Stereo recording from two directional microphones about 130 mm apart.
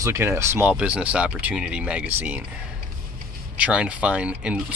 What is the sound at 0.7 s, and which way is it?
Speech, 10° right (ahead or behind).